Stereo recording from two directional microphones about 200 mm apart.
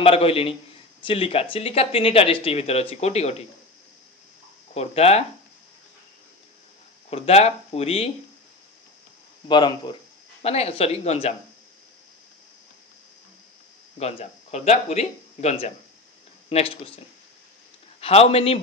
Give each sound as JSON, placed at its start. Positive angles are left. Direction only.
{"t": 0.0, "sound": "speech", "side_deg": 30}
{"t": 4.7, "sound": "speech", "side_deg": 30}
{"t": 7.1, "sound": "speech", "side_deg": 30}
{"t": 9.5, "sound": "speech", "side_deg": 20}
{"t": 13.9, "sound": "speech", "side_deg": 30}
{"t": 18.0, "sound": "speech", "side_deg": 30}